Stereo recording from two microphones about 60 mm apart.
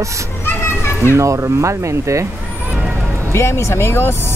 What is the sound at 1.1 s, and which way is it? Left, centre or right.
Speech, right.